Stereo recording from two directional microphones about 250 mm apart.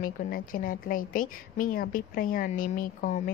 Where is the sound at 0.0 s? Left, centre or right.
Left.